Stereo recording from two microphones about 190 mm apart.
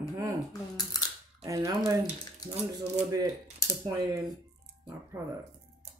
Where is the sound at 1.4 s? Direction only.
20° right (ahead or behind).